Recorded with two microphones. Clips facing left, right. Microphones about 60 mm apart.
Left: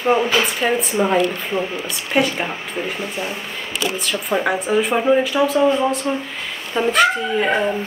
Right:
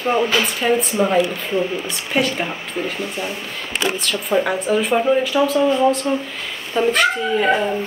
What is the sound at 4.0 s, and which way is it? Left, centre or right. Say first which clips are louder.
Speech: even; centre.